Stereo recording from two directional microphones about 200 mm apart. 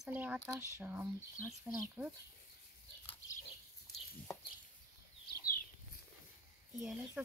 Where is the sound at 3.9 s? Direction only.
55° left (ahead or behind).